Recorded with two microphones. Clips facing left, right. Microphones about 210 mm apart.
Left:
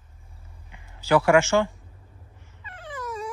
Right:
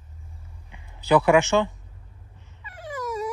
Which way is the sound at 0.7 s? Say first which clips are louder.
Right 1 dB; 20° right (ahead or behind).